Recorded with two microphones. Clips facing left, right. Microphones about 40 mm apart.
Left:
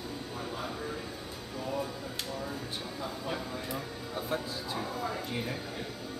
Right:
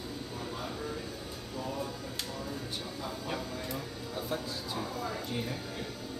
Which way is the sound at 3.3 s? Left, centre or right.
Centre.